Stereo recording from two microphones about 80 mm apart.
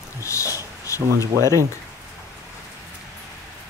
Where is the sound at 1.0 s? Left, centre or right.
Right.